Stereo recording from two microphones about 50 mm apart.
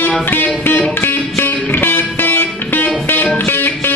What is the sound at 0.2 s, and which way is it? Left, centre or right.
Music, left.